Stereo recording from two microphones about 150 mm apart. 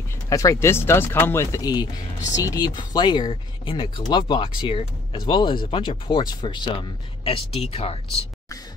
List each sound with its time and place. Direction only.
0.3 s speech: 20° left (ahead or behind); by 8.0 s 40° left (ahead or behind)